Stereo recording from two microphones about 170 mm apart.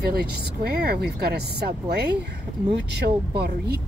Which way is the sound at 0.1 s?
65° right (ahead or behind).